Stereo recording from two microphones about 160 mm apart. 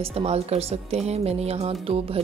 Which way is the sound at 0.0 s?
40° right (ahead or behind).